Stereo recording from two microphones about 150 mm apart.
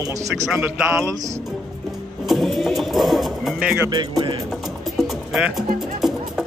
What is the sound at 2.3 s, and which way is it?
Music, centre (ahead or behind).